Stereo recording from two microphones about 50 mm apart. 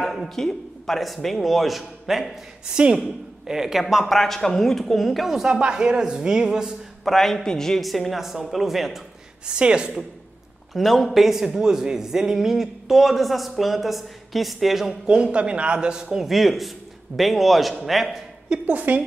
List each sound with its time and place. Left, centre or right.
0.0 s a man's voice: centre
2.6 s speech: centre
3.8 s a man's voice: centre
7.1 s a man's voice: centre
9.5 s a man's voice: centre
10.7 s a man's voice: centre
15.0 s a man's voice: centre
16.3 s a man's voice: centre
18.5 s a man's voice: right